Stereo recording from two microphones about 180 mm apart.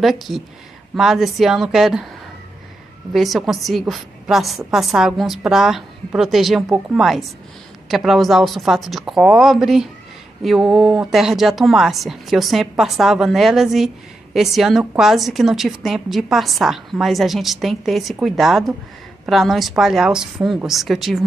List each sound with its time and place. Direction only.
0.0 s speech: centre (ahead or behind)
3.1 s speech: centre (ahead or behind)